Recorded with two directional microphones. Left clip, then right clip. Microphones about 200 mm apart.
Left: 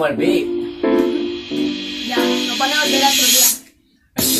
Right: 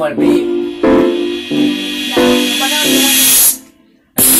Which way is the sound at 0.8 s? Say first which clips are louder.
Right 6 dB; 45° right (ahead or behind).